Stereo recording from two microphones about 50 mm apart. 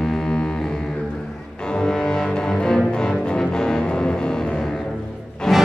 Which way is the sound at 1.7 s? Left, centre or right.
Centre.